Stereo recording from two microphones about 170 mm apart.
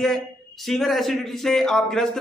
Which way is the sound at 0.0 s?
Centre (ahead or behind).